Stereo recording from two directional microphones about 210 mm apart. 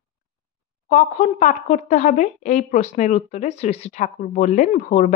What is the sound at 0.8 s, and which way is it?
A woman's voice, 35° left (ahead or behind).